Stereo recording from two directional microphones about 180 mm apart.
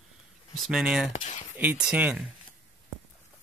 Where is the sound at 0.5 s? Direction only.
Centre (ahead or behind).